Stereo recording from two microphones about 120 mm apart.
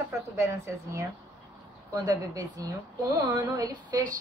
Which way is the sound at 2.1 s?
30° right (ahead or behind).